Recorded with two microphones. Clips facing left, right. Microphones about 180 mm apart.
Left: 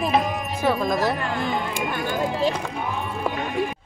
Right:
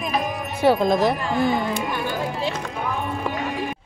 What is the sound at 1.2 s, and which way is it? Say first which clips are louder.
Music: right 4 dB; 50° left (ahead or behind).